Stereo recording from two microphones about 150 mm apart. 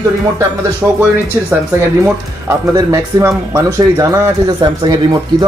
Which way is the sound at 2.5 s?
20° right (ahead or behind).